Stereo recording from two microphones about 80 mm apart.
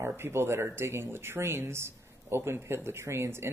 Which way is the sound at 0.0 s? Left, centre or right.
Right.